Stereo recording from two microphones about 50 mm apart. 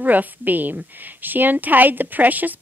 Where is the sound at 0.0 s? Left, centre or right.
Right.